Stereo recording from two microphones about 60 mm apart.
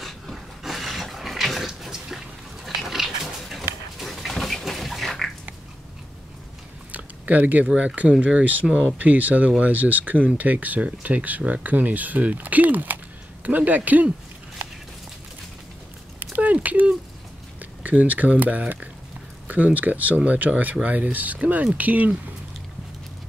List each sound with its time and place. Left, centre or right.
0.0 s dog: centre
6.9 s speech: right
16.2 s a sound: right
16.6 s speech: right